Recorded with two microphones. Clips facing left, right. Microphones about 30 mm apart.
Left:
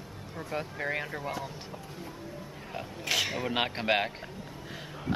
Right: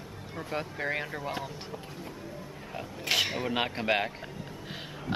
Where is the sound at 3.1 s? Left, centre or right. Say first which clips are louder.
Right 2 dB; centre.